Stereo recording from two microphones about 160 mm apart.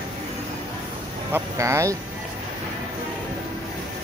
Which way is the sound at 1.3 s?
20° right (ahead or behind).